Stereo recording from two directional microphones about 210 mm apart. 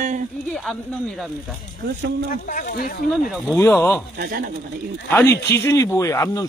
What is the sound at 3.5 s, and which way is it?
Speech, 10° left (ahead or behind).